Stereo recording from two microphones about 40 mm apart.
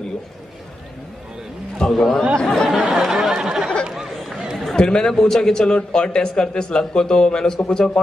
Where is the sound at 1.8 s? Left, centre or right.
Centre.